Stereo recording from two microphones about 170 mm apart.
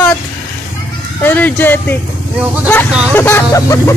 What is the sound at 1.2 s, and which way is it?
Speech, 10° left (ahead or behind).